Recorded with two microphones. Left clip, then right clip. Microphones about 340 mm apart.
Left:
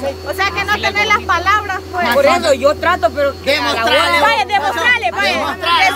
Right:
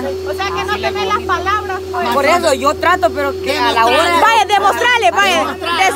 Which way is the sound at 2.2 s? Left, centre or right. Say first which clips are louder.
Left 1 dB; centre.